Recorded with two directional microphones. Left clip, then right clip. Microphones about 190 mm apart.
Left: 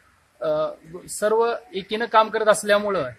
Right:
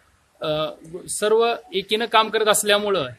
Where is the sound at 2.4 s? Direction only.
25° right (ahead or behind).